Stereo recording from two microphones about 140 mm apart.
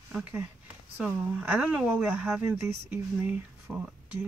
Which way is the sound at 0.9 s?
10° right (ahead or behind).